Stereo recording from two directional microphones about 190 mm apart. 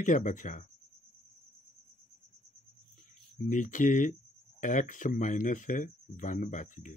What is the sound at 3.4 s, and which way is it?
Speech, 40° left (ahead or behind).